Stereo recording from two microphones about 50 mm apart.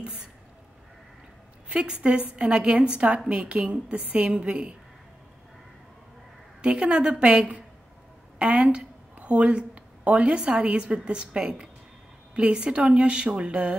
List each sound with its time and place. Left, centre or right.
1.7 s a woman's voice: right
6.6 s a woman's voice: right